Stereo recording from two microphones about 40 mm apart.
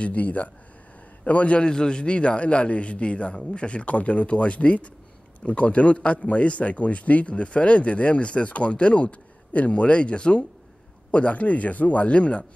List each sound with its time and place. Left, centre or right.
0.0 s speech: left
1.7 s a man's voice: centre